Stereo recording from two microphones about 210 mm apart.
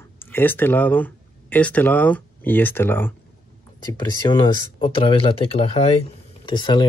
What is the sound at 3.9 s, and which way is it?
Speech, 20° left (ahead or behind).